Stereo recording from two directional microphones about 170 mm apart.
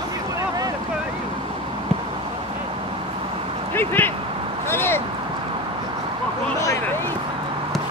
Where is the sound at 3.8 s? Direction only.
10° left (ahead or behind).